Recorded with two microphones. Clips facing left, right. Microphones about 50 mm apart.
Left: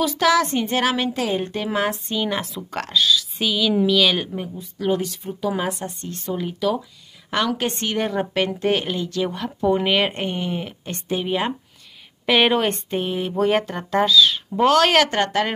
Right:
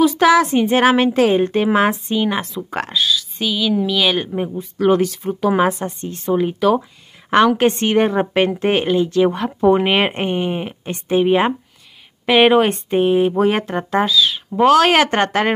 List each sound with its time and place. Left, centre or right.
0.0 s a woman's voice: right
2.0 s speech: centre
4.6 s speech: right
5.7 s a woman's voice: right
12.3 s speech: centre
12.9 s speech: right
15.0 s a woman's voice: right